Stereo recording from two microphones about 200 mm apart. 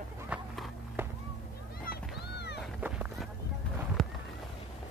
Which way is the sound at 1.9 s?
55° left (ahead or behind).